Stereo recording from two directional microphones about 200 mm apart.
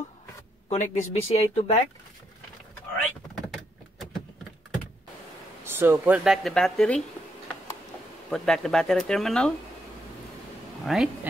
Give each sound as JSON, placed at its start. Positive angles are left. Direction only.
{"t": 0.7, "sound": "speech", "side_deg": 35}
{"t": 3.3, "sound": "a sound", "side_deg": 0}
{"t": 5.6, "sound": "speech", "side_deg": -10}
{"t": 8.3, "sound": "speech", "side_deg": 0}
{"t": 10.9, "sound": "speech", "side_deg": 0}